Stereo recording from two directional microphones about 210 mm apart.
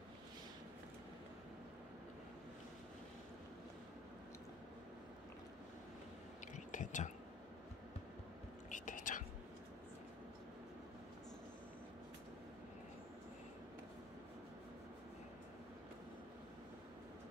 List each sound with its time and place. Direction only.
6.4 s whispering: 35° left (ahead or behind)
8.6 s whispering: 35° left (ahead or behind)